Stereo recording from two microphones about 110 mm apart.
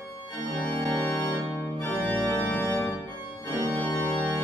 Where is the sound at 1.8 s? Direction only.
15° left (ahead or behind).